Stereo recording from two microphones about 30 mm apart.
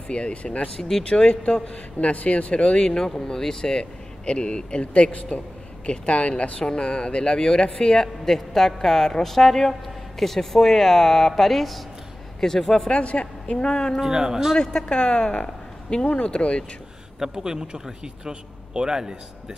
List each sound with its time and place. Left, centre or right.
0.1 s speech: left
0.7 s a woman's voice: centre
1.0 s speech: left
1.4 s speech: left
2.5 s speech: left
3.0 s speech: centre
4.3 s speech: left
6.7 s a woman's voice: left; by 12.9 s centre
12.9 s speech: left
14.0 s a man's voice: right
14.6 s a woman's voice: left
17.2 s a man's voice: centre